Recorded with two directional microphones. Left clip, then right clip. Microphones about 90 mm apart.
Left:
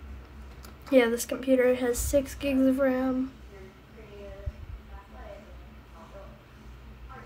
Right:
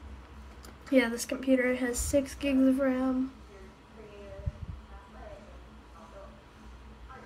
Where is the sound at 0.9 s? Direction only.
20° left (ahead or behind).